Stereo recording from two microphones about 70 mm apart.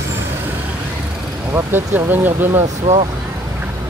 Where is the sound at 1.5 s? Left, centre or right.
Right.